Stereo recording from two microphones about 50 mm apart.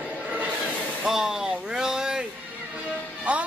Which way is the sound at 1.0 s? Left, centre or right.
Centre.